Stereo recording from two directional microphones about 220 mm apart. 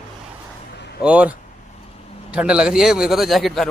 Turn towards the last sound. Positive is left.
turn(degrees=0)  # may be behind; listen again after turning